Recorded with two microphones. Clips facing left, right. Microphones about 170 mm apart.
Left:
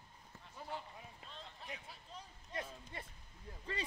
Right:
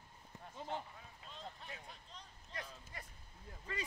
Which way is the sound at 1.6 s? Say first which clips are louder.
Left 2 dB; centre (ahead or behind).